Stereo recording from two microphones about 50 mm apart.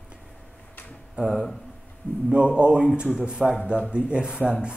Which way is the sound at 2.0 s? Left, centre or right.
Left.